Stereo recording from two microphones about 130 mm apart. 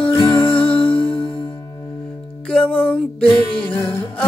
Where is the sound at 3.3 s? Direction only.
40° left (ahead or behind).